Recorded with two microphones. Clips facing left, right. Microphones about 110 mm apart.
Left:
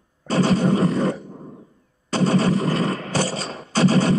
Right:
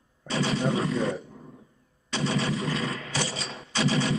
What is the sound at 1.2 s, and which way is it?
Grunt, 40° left (ahead or behind).